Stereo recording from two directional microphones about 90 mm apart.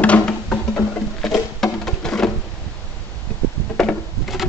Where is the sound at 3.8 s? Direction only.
5° left (ahead or behind).